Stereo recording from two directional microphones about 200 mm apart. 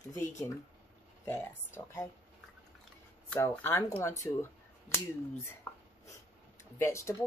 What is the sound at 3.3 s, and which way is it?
Speech, 10° left (ahead or behind).